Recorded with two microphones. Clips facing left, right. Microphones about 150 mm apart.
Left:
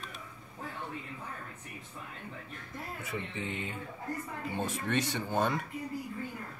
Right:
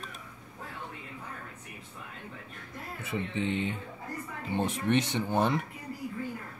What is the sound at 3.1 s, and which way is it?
Speech, 25° right (ahead or behind).